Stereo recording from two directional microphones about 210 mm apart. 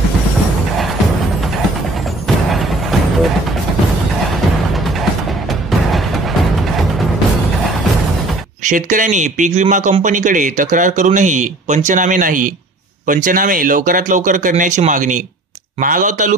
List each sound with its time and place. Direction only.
2.2 s a sound: centre (ahead or behind)
5.5 s music: centre (ahead or behind)
8.6 s speech: 40° right (ahead or behind)